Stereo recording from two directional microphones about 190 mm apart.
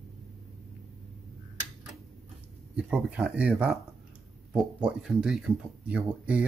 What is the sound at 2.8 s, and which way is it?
Speech, 5° right (ahead or behind).